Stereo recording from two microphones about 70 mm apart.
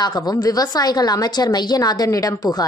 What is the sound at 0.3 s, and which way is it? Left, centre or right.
A woman's voice, left.